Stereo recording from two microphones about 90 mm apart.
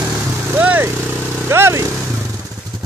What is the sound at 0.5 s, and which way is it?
Vehicle, 20° right (ahead or behind).